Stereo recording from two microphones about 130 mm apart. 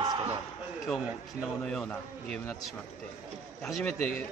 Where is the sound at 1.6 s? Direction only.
5° left (ahead or behind).